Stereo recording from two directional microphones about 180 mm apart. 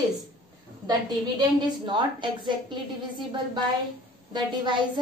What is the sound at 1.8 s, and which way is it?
Speech, 25° right (ahead or behind).